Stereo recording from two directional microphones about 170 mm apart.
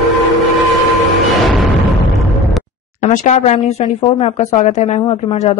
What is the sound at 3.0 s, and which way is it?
Speech, 45° left (ahead or behind).